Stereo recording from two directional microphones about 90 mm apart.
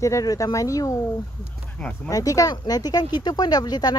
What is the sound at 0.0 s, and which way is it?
Speech, 40° left (ahead or behind).